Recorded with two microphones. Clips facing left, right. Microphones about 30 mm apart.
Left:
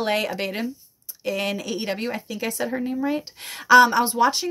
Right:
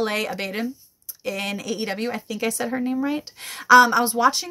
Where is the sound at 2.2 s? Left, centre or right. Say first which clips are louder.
Right 2 dB; centre.